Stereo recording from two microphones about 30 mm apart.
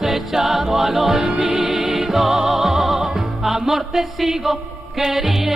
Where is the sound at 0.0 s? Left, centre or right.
Centre.